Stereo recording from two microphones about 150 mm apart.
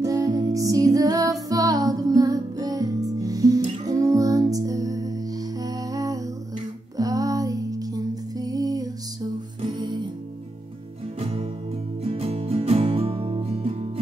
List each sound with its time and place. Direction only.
0.0 s music: 25° right (ahead or behind)
11.1 s music: 40° right (ahead or behind)